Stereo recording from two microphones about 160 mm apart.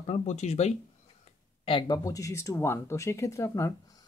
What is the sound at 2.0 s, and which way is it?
Speech, 20° left (ahead or behind).